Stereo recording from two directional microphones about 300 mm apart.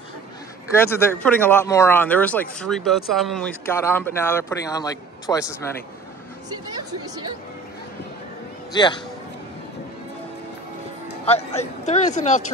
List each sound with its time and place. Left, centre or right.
0.7 s speech: centre
6.5 s a woman's voice: centre
8.7 s speech: centre
11.2 s speech: left